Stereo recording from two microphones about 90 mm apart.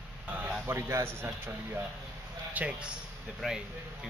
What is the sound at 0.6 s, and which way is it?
A man's voice, 30° right (ahead or behind).